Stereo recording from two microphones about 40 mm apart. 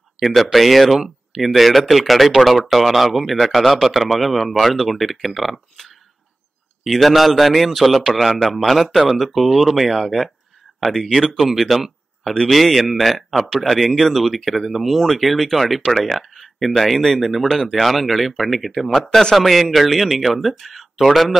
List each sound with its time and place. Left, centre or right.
0.3 s speech: centre
6.9 s speech: centre
11.1 s speech: centre
11.3 s speech: centre